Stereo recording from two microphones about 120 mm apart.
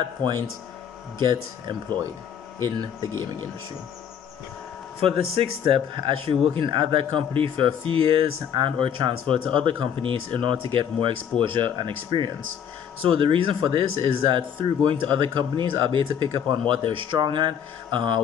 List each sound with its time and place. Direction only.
1.2 s speech: 40° right (ahead or behind)
5.0 s speech: 50° right (ahead or behind)